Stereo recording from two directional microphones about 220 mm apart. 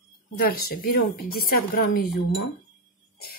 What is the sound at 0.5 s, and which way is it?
Speech, 40° left (ahead or behind).